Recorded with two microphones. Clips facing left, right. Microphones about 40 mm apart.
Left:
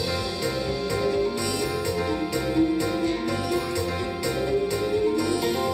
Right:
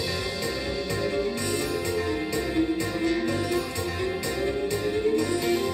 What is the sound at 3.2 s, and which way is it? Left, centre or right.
Music, left.